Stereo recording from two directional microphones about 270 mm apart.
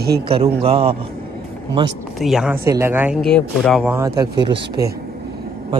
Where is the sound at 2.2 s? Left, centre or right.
Centre.